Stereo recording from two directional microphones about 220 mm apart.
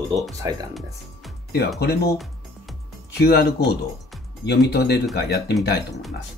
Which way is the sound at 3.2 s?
45° left (ahead or behind).